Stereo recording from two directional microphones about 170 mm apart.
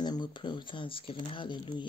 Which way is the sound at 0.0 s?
25° left (ahead or behind).